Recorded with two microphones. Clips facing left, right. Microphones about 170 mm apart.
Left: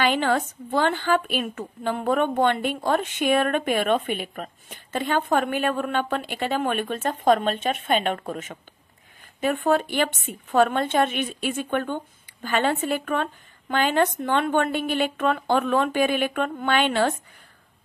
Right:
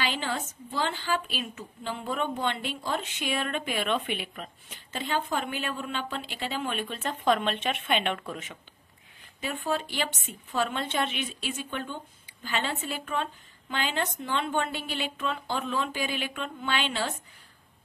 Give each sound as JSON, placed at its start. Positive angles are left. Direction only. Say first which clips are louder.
{"t": 0.0, "sound": "a woman's voice", "louder": "left 9 dB", "side_deg": 60}
{"t": 9.4, "sound": "a woman's voice", "louder": "left 9 dB", "side_deg": 55}